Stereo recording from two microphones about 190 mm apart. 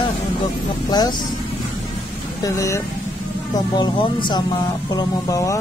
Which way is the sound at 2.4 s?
15° left (ahead or behind).